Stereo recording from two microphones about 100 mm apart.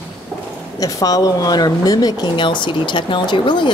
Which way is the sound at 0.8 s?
35° left (ahead or behind).